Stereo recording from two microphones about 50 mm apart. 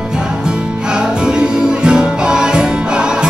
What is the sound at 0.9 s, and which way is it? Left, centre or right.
Music, centre.